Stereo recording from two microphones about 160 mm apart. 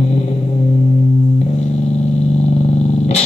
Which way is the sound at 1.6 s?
40° left (ahead or behind).